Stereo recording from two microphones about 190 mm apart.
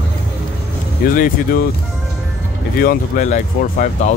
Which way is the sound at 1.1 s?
45° left (ahead or behind).